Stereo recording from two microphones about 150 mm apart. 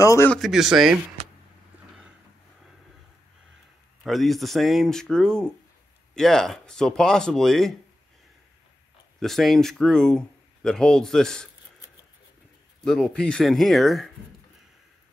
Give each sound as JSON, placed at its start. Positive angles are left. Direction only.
{"t": 0.0, "sound": "a man's voice", "side_deg": 20}
{"t": 0.3, "sound": "speech", "side_deg": 0}
{"t": 4.0, "sound": "speech", "side_deg": 0}
{"t": 9.2, "sound": "speech", "side_deg": 0}
{"t": 12.8, "sound": "speech", "side_deg": 5}